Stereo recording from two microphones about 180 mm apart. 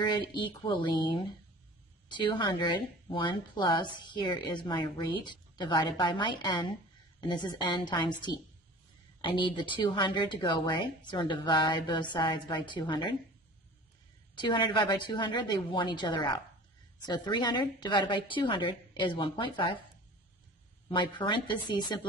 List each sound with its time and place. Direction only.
0.0 s speech: 25° left (ahead or behind)
14.3 s speech: 25° left (ahead or behind)
20.9 s speech: 25° left (ahead or behind)